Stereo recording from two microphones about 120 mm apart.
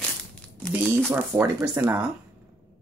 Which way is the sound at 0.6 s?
10° left (ahead or behind).